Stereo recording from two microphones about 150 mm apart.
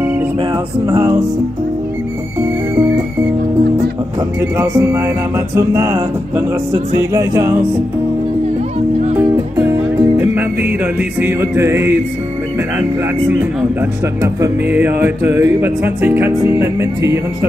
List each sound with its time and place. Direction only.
0.8 s music: 20° right (ahead or behind)
4.4 s music: 15° right (ahead or behind)
9.6 s music: 15° right (ahead or behind)
13.3 s speech: 10° right (ahead or behind)